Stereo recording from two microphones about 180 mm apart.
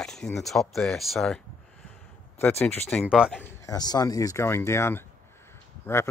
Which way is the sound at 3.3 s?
15° left (ahead or behind).